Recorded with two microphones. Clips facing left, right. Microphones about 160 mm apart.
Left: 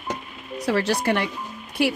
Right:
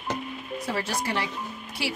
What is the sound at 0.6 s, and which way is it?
Speech, 75° left (ahead or behind).